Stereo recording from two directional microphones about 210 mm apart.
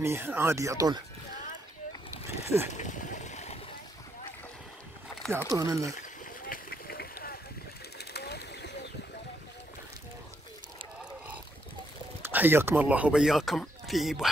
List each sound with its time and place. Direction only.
0.0 s speech: 10° right (ahead or behind)
2.4 s speech: 10° right (ahead or behind)
2.7 s a sound: 35° left (ahead or behind)
5.5 s speech: 15° right (ahead or behind)
6.4 s vehicle: 45° left (ahead or behind)
8.0 s a sound: 50° left (ahead or behind)
12.2 s speech: 10° right (ahead or behind)